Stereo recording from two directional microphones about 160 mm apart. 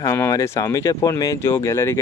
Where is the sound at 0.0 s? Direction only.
20° left (ahead or behind).